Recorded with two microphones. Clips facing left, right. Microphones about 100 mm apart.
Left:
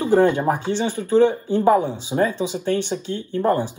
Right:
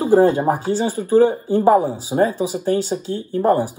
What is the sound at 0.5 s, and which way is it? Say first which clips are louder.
Speech: right 2 dB; 40° right (ahead or behind).